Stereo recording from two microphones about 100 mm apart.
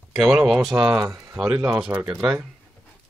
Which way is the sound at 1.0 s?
30° right (ahead or behind).